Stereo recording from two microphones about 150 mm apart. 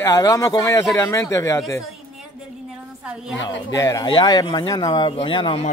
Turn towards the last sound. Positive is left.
turn(degrees=35)  # may be behind; listen again after turning